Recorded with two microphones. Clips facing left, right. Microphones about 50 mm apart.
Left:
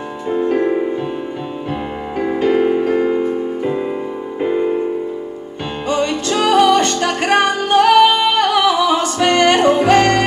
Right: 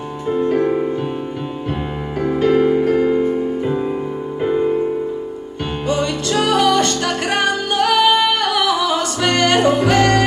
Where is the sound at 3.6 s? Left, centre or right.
Left.